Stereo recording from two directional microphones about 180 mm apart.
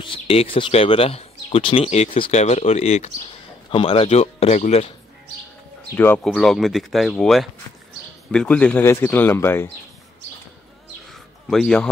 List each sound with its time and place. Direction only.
0.0 s speech: 30° left (ahead or behind)
5.9 s speech: 10° left (ahead or behind)
11.1 s a sound: centre (ahead or behind)